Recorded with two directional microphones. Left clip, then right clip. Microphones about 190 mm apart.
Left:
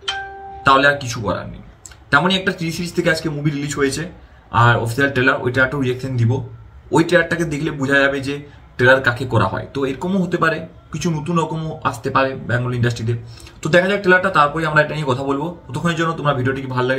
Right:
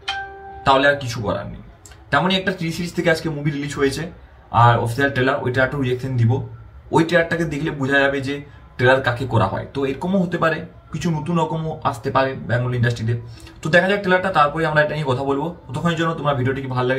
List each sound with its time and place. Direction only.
0.7 s a man's voice: 10° left (ahead or behind)